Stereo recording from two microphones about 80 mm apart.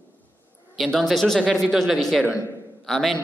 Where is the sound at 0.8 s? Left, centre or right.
Centre.